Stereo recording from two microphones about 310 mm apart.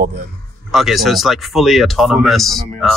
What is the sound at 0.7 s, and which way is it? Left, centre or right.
A man's voice, centre.